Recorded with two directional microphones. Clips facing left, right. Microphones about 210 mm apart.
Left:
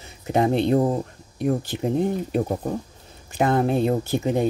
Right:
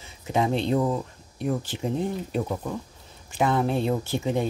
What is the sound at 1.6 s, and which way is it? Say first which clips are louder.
Speech: left 5 dB; 55° left (ahead or behind).